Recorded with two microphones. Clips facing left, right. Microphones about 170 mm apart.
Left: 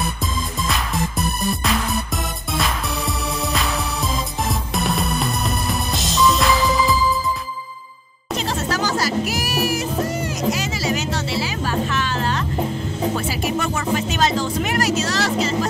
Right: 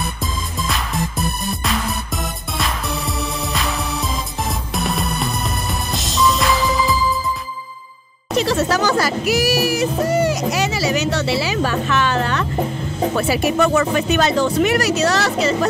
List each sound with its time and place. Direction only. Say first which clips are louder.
0.7 s music: right 1 dB; centre (ahead or behind)
8.4 s music: right 6 dB; 60° right (ahead or behind)
13.1 s speech: right 4 dB; 65° right (ahead or behind)